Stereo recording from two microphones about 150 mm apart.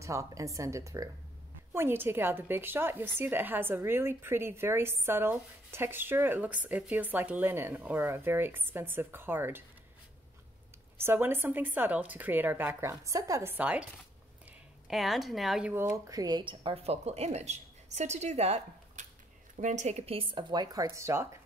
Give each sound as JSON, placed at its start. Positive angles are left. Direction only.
{"t": 0.0, "sound": "a woman's voice", "side_deg": -20}
{"t": 11.0, "sound": "a woman's voice", "side_deg": -15}
{"t": 14.9, "sound": "speech", "side_deg": 0}
{"t": 15.7, "sound": "a woman's voice", "side_deg": -15}